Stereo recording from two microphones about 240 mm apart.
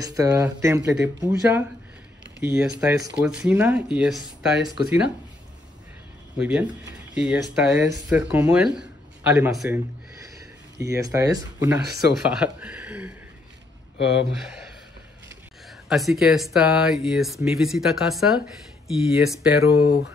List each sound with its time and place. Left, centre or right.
0.0 s speech: centre
6.3 s speech: centre
10.8 s speech: centre
13.9 s speech: left
14.3 s speech: centre
15.9 s speech: centre